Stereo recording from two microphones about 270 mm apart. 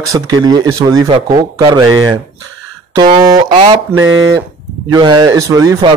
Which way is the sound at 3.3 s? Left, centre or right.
Centre.